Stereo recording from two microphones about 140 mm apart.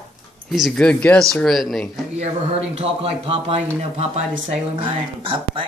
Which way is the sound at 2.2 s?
45° right (ahead or behind).